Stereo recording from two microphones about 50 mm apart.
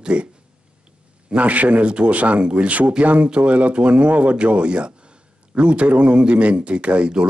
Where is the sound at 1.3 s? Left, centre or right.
Right.